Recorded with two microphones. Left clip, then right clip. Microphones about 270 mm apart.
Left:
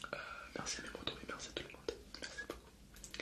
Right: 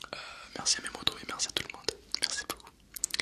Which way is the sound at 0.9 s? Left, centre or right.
Right.